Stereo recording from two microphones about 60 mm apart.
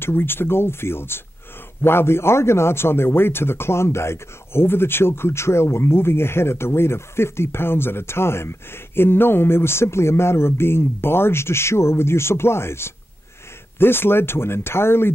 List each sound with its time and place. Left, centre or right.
0.0 s speech: left